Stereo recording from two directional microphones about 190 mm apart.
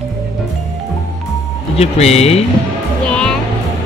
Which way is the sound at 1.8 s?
35° left (ahead or behind).